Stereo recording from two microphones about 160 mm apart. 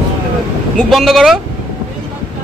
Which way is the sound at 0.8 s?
Centre (ahead or behind).